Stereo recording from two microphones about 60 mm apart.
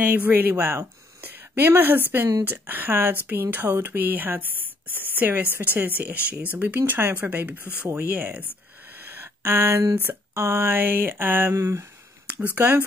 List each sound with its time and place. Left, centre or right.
0.0 s a woman's voice: right
8.9 s a sound: right
10.3 s speech: right
10.6 s speech: right
12.4 s speech: right